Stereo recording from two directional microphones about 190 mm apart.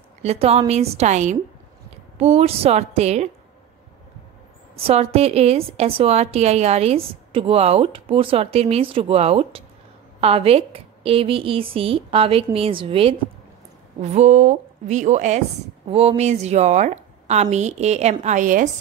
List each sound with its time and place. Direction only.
0.2 s a woman's voice: 35° right (ahead or behind)
4.7 s a woman's voice: 30° right (ahead or behind)